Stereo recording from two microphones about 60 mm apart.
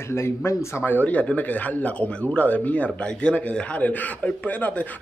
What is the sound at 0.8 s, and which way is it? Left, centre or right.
Speech, left.